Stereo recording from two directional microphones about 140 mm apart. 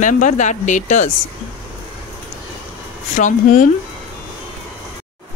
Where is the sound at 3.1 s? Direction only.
60° left (ahead or behind).